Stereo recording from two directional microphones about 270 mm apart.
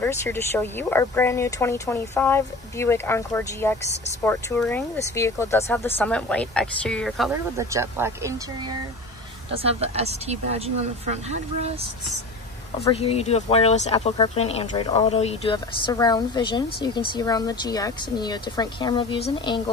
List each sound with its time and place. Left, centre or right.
0.0 s speech: centre
7.5 s speech: centre
9.7 s speech: right
12.8 s speech: left